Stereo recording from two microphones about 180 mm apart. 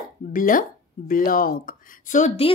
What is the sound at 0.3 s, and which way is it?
Speech, 50° left (ahead or behind).